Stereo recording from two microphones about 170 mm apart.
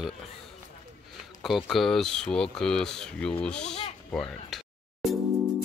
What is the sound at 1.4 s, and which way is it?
Speech, centre (ahead or behind).